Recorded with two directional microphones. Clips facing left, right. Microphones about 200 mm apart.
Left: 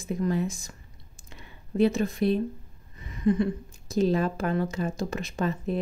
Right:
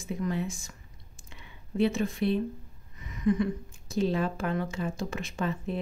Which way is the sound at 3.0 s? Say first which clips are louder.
Left 2 dB; 30° left (ahead or behind).